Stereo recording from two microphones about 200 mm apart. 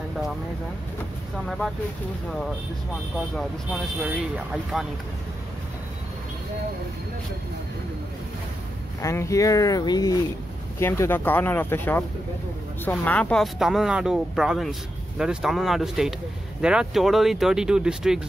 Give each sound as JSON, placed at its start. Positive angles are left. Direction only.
{"t": 3.3, "sound": "speech", "side_deg": 0}
{"t": 9.0, "sound": "speech", "side_deg": 15}